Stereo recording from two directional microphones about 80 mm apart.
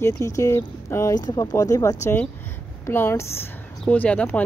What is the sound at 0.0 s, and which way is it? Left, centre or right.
Speech, left.